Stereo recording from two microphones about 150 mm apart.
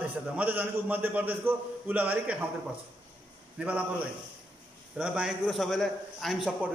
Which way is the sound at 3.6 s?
10° right (ahead or behind).